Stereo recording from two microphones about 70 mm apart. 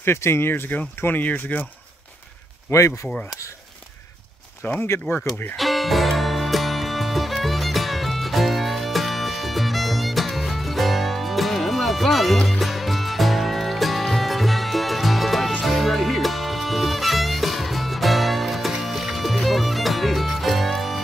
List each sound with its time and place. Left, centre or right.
0.0 s speech: left
2.7 s speech: left
4.6 s speech: left
5.0 s speech: centre
5.6 s music: centre